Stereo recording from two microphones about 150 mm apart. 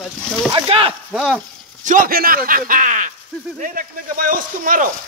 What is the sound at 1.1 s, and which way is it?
Speech, 5° right (ahead or behind).